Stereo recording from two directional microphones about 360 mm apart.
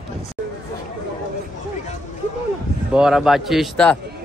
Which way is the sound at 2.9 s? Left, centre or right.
Centre.